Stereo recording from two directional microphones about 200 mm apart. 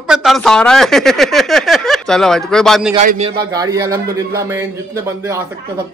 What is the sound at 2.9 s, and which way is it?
Speech, 35° right (ahead or behind).